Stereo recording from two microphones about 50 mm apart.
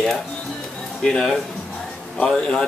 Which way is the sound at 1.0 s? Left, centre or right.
Centre.